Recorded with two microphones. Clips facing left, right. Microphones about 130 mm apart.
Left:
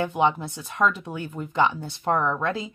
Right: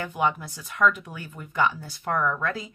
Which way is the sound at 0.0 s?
20° left (ahead or behind).